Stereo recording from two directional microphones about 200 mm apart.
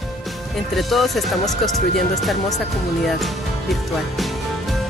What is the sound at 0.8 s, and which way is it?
Speech, centre (ahead or behind).